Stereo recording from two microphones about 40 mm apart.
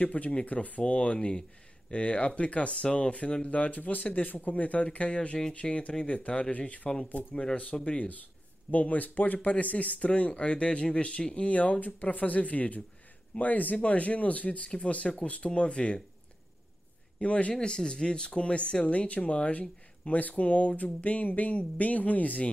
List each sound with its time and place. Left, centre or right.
0.0 s speech: left
7.7 s speech: centre
8.6 s speech: left
17.2 s speech: left
17.6 s speech: centre; by 22.5 s left